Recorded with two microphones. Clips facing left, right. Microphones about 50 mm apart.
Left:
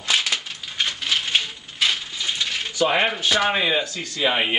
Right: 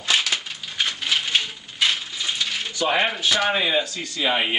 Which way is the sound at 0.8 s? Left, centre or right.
Centre.